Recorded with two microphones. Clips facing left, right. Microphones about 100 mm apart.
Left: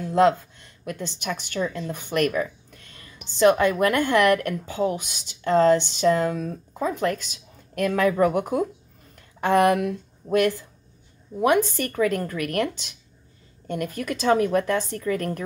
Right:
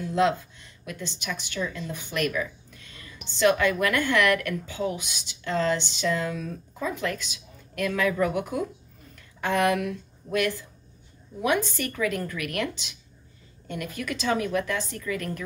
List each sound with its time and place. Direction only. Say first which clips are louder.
0.0 s a woman's voice: left 5 dB; 45° left (ahead or behind)
1.6 s a woman's voice: left 4 dB; 35° left (ahead or behind)
1.9 s speech: left 5 dB; 50° left (ahead or behind)
9.1 s a sound: left 6 dB; 50° left (ahead or behind)
11.4 s a woman's voice: left 5 dB; 40° left (ahead or behind)